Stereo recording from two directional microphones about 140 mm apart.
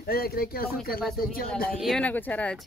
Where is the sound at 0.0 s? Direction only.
90° left.